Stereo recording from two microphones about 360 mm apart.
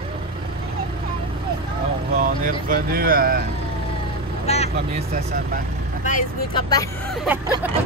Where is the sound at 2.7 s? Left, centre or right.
Right.